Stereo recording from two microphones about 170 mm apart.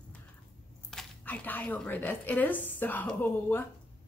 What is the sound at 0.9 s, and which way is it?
A woman's voice, 10° left (ahead or behind).